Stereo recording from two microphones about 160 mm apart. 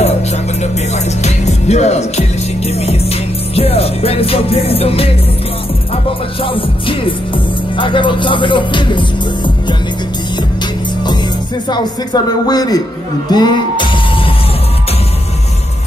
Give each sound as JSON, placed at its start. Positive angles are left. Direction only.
{"t": 0.6, "sound": "music", "side_deg": 45}
{"t": 6.4, "sound": "music", "side_deg": 35}
{"t": 11.7, "sound": "a woman's voice", "side_deg": 25}
{"t": 13.3, "sound": "music", "side_deg": 25}